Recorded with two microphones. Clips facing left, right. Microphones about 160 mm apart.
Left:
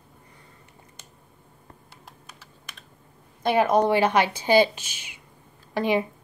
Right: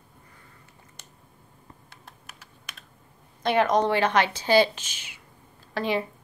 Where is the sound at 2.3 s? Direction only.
5° right (ahead or behind).